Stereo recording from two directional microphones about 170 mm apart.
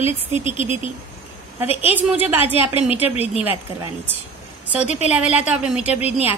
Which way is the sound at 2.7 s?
35° left (ahead or behind).